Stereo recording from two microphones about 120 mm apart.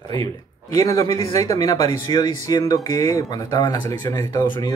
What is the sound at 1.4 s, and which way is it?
Speech, 30° left (ahead or behind).